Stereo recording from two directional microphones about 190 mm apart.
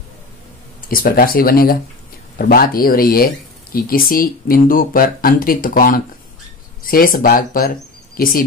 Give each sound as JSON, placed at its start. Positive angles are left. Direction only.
{"t": 0.7, "sound": "speech", "side_deg": 50}